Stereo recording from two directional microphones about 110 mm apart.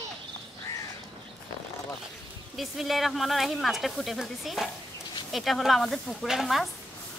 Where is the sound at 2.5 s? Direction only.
Centre (ahead or behind).